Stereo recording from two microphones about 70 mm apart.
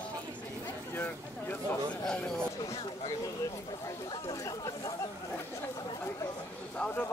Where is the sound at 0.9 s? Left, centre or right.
Left.